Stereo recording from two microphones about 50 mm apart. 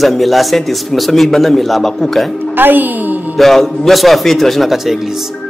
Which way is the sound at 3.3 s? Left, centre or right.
Centre.